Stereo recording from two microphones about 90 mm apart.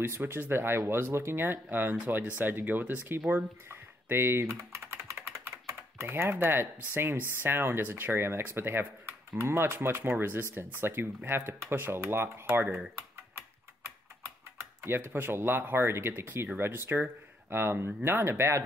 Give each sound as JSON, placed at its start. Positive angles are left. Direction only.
{"t": 0.0, "sound": "speech", "side_deg": -25}
{"t": 14.8, "sound": "speech", "side_deg": -25}